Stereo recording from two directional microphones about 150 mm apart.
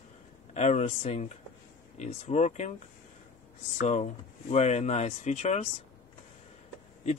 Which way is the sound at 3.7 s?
55° left (ahead or behind).